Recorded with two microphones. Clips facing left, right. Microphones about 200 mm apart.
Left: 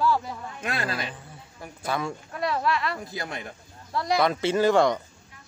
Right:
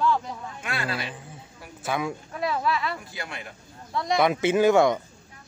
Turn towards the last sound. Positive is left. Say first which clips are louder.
# right 2 dB
turn(degrees=-5)  # may be behind; listen again after turning